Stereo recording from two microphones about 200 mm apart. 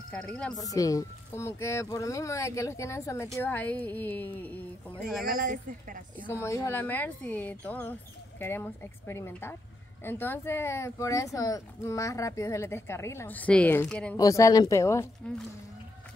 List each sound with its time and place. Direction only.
0.1 s speech: 5° left (ahead or behind)
0.6 s speech: 15° left (ahead or behind)
5.0 s speech: 45° right (ahead or behind)
6.2 s speech: 15° left (ahead or behind)
14.1 s speech: 15° left (ahead or behind)